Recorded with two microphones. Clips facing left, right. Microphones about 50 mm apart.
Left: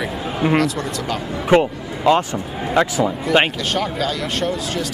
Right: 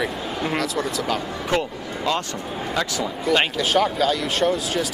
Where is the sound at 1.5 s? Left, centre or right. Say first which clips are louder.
Left 9 dB; left.